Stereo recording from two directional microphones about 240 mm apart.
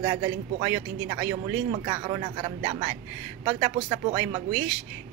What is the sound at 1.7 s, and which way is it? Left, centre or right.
Speech, centre.